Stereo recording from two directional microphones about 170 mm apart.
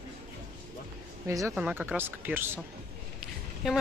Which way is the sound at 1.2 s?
15° right (ahead or behind).